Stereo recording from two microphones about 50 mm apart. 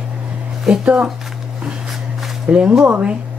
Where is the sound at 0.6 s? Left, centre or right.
Centre.